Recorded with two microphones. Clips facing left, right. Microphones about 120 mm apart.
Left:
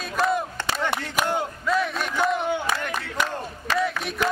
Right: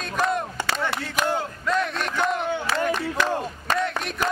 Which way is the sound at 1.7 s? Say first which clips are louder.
Even; centre (ahead or behind).